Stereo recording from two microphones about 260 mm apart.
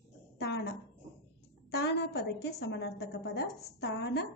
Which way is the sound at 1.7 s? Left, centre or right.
Left.